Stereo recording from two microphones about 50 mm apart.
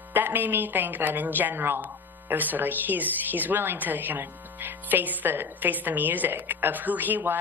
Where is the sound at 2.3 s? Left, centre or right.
Right.